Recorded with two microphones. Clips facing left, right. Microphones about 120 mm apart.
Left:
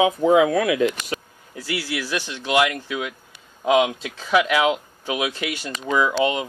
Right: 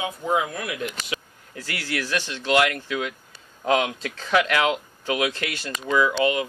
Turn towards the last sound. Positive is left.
turn(degrees=20)  # may be behind; listen again after turning